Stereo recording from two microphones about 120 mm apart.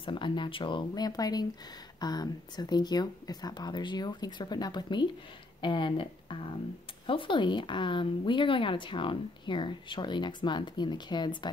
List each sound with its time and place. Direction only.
0.0 s speech: 45° left (ahead or behind)